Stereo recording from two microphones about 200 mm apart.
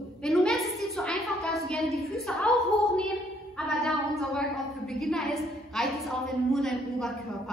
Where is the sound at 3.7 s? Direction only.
Centre (ahead or behind).